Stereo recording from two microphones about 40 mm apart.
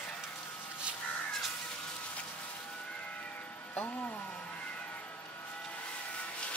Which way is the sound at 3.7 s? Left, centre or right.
Left.